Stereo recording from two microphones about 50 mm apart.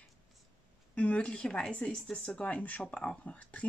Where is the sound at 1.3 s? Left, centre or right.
Centre.